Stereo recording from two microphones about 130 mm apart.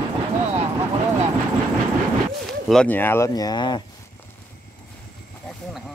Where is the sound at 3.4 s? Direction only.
30° left (ahead or behind).